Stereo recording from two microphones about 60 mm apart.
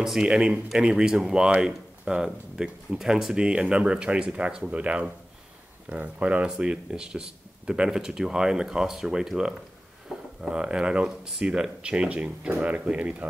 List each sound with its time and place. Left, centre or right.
0.2 s speech: centre
10.1 s a sound: centre
10.4 s speech: centre